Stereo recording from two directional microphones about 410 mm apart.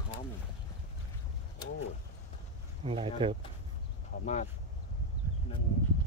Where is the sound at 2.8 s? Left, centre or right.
Centre.